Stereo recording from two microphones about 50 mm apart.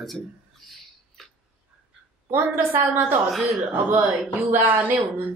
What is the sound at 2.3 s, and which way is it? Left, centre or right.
Speech, right.